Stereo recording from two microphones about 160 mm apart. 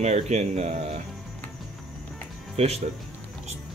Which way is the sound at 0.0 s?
45° right (ahead or behind).